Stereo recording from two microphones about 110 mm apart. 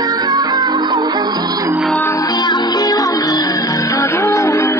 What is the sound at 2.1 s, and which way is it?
Music, 35° left (ahead or behind).